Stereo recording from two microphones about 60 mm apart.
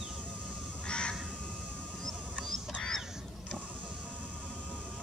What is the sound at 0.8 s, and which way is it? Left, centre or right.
Crow, centre.